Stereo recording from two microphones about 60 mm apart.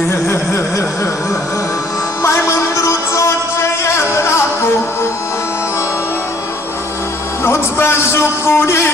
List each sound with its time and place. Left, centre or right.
0.1 s a sound: left
2.2 s music: left
7.4 s a man's voice: left